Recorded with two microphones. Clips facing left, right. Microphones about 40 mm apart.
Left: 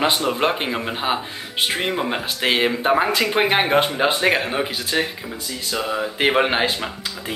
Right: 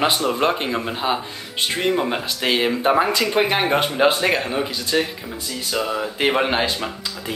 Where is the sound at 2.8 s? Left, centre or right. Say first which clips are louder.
Right 3 dB; centre.